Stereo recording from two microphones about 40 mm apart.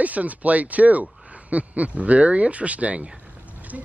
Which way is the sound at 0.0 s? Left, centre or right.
Right.